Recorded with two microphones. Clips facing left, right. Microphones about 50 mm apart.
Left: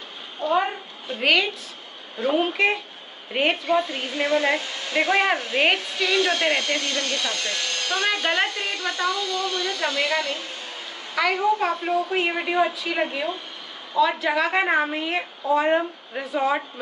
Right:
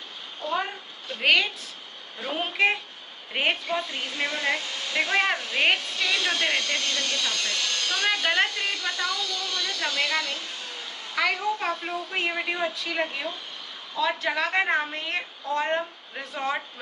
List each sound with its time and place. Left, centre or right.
0.5 s a sound: centre
1.2 s a woman's voice: centre
3.7 s a woman's voice: centre
4.4 s a woman's voice: left; by 6.3 s centre
6.4 s speech: left
8.1 s a woman's voice: centre
11.1 s a woman's voice: centre